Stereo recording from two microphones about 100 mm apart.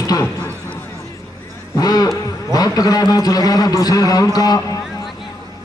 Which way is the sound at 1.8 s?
40° left (ahead or behind).